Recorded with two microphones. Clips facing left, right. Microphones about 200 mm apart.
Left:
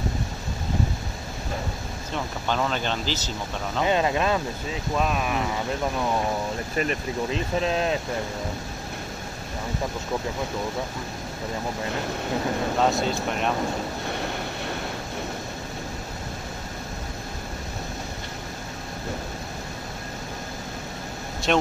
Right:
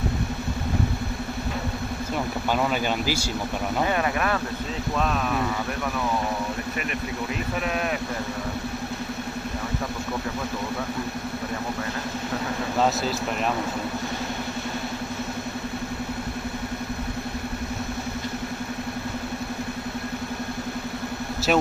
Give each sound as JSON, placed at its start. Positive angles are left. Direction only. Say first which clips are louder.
{"t": 2.5, "sound": "speech", "louder": "right 1 dB", "side_deg": -10}
{"t": 3.8, "sound": "speech", "louder": "left 4 dB", "side_deg": 20}
{"t": 4.9, "sound": "speech", "louder": "left 1 dB", "side_deg": 10}
{"t": 6.8, "sound": "speech", "louder": "left 3 dB", "side_deg": 30}
{"t": 12.9, "sound": "speech", "louder": "left 1 dB", "side_deg": 0}
{"t": 21.5, "sound": "speech", "louder": "right 1 dB", "side_deg": -5}